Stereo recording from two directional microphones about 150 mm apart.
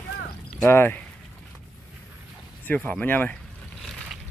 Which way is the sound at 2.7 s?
10° left (ahead or behind).